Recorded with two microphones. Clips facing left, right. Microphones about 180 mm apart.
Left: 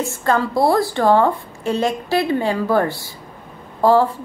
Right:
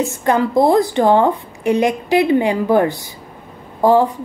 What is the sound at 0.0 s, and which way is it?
A woman's voice, 15° right (ahead or behind).